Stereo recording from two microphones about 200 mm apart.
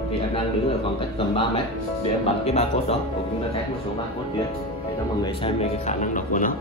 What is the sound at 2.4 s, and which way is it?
Speech, 30° left (ahead or behind).